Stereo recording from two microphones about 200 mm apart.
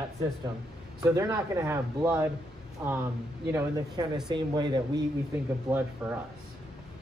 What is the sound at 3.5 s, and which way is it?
Speech, 15° right (ahead or behind).